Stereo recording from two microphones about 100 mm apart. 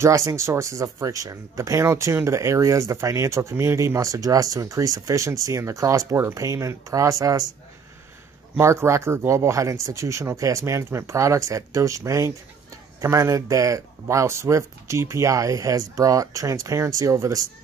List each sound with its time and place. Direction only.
0.0 s speech: 30° right (ahead or behind)
8.5 s speech: 30° right (ahead or behind)